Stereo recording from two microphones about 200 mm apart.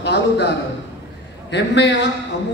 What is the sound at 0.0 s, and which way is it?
Speech, 55° left (ahead or behind).